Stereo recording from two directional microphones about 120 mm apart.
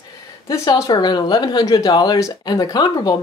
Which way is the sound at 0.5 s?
35° left (ahead or behind).